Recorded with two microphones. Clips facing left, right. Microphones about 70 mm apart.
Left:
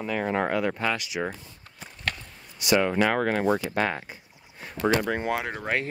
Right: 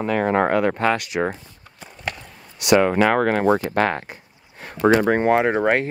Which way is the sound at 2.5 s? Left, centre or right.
Right.